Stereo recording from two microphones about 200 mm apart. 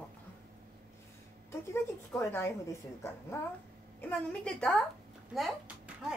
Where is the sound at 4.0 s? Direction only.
5° left (ahead or behind).